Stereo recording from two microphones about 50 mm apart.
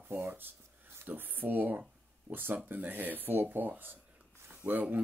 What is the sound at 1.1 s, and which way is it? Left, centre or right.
Speech, right.